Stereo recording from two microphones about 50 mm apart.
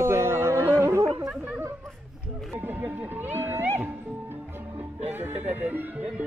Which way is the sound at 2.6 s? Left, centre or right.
Right.